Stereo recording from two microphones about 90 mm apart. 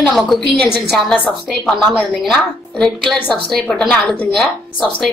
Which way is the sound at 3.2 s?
15° left (ahead or behind).